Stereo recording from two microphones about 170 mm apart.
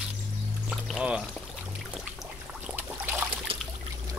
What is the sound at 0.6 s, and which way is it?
Music, 5° right (ahead or behind).